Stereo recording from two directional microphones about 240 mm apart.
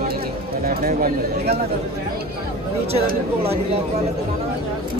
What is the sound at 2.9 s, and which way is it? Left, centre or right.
Speech, right.